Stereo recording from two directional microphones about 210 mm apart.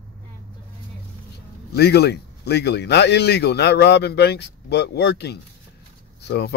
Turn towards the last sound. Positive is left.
turn(degrees=50)  # may be behind; listen again after turning